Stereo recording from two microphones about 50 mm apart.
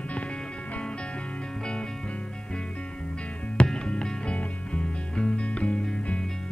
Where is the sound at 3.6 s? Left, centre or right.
Centre.